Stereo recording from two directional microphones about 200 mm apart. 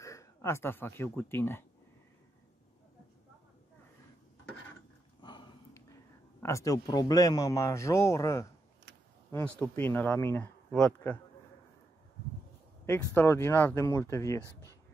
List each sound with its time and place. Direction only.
0.0 s speech: 15° left (ahead or behind)
5.2 s a sound: 20° left (ahead or behind)
6.4 s speech: 15° left (ahead or behind)
12.8 s speech: 15° left (ahead or behind)
14.4 s speech: 15° right (ahead or behind)